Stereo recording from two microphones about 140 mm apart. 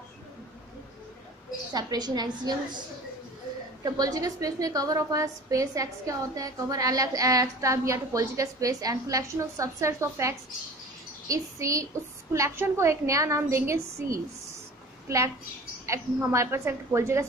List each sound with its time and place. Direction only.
1.7 s a woman's voice: 30° right (ahead or behind)
3.8 s a woman's voice: 25° right (ahead or behind)